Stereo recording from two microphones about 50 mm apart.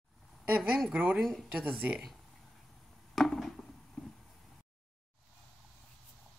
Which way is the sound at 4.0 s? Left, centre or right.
Centre.